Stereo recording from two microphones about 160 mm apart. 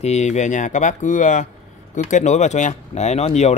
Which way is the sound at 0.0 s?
45° left (ahead or behind).